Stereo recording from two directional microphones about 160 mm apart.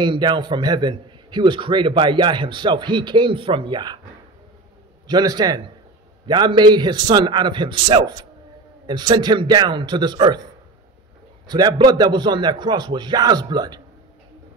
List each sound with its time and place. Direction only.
0.0 s a man's voice: 30° right (ahead or behind)
5.0 s a man's voice: 25° right (ahead or behind)
11.4 s a man's voice: 25° right (ahead or behind)